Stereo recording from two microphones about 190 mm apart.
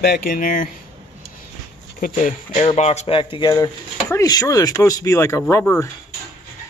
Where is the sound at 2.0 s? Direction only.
45° left (ahead or behind).